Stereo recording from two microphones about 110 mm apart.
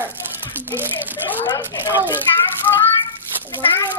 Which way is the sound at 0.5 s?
20° right (ahead or behind).